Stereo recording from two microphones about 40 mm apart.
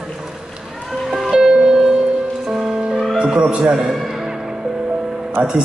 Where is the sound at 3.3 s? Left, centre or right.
Right.